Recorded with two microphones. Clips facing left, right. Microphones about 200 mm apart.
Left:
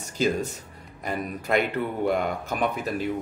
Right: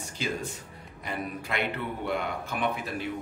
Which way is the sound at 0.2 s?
40° left (ahead or behind).